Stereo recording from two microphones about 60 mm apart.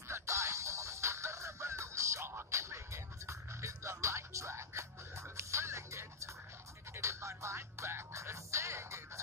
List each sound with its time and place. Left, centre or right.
0.1 s music: right